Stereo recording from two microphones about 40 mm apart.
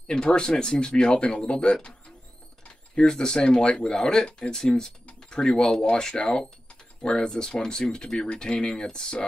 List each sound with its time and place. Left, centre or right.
0.1 s speech: left